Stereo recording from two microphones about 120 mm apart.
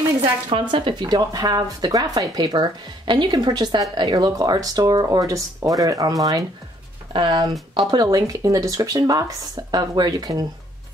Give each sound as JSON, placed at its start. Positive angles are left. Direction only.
{"t": 0.2, "sound": "speech", "side_deg": -45}